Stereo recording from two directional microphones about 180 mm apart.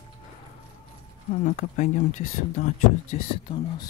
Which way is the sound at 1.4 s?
45° left (ahead or behind).